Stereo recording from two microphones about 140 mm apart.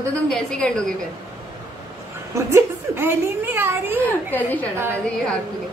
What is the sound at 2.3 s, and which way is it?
A woman's voice, 20° right (ahead or behind).